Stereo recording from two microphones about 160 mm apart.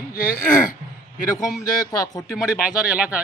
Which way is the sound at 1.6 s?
20° left (ahead or behind).